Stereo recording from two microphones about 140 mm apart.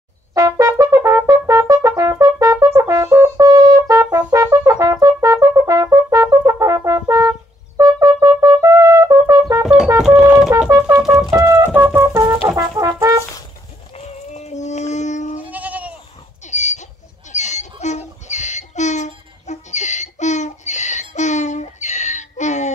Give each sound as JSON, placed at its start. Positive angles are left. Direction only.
{"t": 0.3, "sound": "brass instrument", "side_deg": -25}
{"t": 9.6, "sound": "brass instrument", "side_deg": -5}
{"t": 9.9, "sound": "music", "side_deg": -5}
{"t": 10.7, "sound": "brass instrument", "side_deg": -25}
{"t": 11.3, "sound": "music", "side_deg": -20}
{"t": 11.9, "sound": "wind instrument", "side_deg": -20}
{"t": 12.4, "sound": "brass instrument", "side_deg": -25}
{"t": 13.9, "sound": "a sound", "side_deg": 55}
{"t": 15.4, "sound": "goat", "side_deg": -10}
{"t": 16.4, "sound": "a sound", "side_deg": 55}